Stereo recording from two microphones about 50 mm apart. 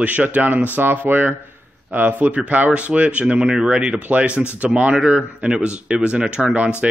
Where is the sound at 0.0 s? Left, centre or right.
Right.